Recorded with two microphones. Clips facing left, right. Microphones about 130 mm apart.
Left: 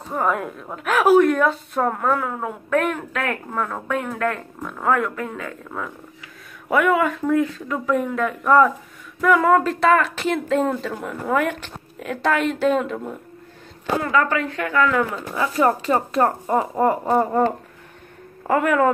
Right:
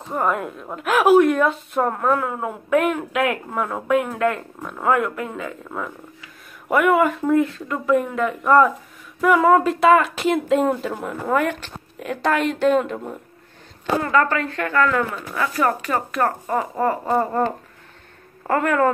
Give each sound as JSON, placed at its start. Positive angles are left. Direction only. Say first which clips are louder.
{"t": 0.1, "sound": "a woman's voice", "louder": "even", "side_deg": 0}
{"t": 15.3, "sound": "speech", "louder": "left 2 dB", "side_deg": 20}
{"t": 18.5, "sound": "speech", "louder": "left 1 dB", "side_deg": 10}